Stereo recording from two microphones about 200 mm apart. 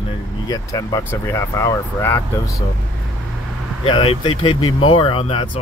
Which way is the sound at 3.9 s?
25° left (ahead or behind).